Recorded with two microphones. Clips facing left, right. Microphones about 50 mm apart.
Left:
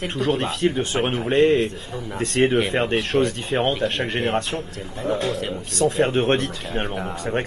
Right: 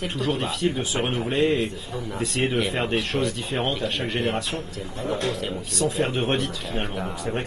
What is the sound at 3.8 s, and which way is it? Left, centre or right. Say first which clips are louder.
Speech: left 3 dB; left.